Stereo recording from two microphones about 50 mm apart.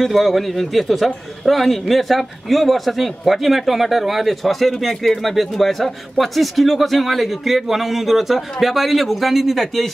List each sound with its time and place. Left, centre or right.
0.0 s a man's voice: centre